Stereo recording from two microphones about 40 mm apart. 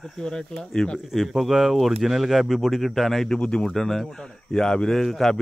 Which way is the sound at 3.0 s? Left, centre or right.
Centre.